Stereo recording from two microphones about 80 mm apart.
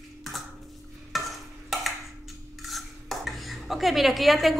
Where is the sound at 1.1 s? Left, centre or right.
Centre.